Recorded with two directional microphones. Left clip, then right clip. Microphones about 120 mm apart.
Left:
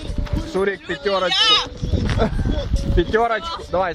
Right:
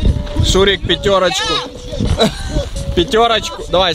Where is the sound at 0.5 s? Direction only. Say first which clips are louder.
Right 9 dB; 35° right (ahead or behind).